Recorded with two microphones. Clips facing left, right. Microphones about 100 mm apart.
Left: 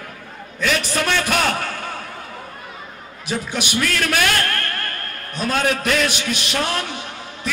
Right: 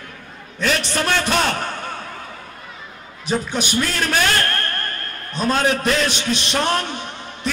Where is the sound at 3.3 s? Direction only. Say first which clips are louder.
Right 2 dB; 35° right (ahead or behind).